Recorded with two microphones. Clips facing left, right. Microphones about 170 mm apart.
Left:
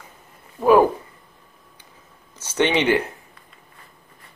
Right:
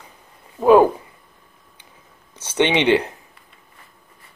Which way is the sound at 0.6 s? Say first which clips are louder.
Right 2 dB; 25° right (ahead or behind).